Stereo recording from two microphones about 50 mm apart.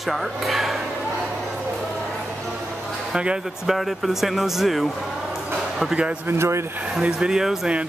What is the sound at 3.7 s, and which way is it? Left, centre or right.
Speech, centre.